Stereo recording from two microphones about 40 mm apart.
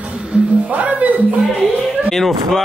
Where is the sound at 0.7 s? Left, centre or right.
Right.